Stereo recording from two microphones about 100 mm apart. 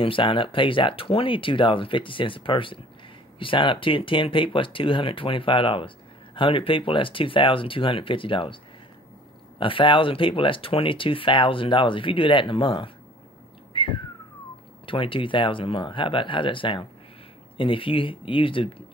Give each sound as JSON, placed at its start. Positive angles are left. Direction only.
{"t": 0.0, "sound": "speech", "side_deg": 60}
{"t": 9.6, "sound": "speech", "side_deg": 60}
{"t": 13.7, "sound": "whistling", "side_deg": 60}
{"t": 14.9, "sound": "speech", "side_deg": 60}